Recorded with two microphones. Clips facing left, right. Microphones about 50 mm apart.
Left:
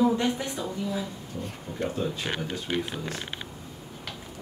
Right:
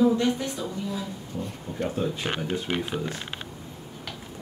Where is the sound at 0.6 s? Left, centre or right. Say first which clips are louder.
Left 1 dB; centre.